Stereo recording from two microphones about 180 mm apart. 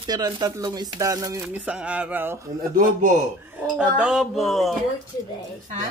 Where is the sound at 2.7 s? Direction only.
45° right (ahead or behind).